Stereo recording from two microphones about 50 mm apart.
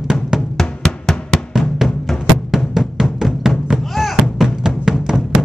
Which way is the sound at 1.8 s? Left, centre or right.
Centre.